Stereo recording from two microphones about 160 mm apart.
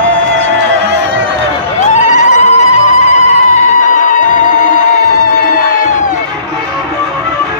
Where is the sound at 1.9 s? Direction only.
45° left (ahead or behind).